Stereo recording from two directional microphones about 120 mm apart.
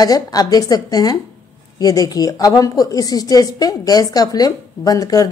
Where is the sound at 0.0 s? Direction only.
30° left (ahead or behind).